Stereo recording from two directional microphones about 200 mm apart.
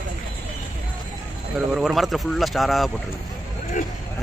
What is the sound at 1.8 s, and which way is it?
Speech, centre (ahead or behind).